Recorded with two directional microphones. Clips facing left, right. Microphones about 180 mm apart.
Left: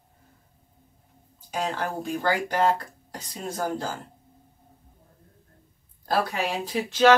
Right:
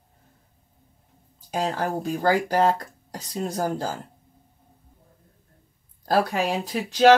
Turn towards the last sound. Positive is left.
turn(degrees=-40)  # may be behind; listen again after turning